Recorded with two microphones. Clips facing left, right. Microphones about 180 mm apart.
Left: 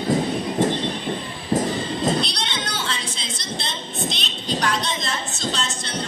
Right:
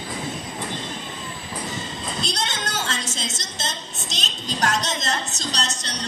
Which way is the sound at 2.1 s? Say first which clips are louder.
Left 2 dB; 45° right (ahead or behind).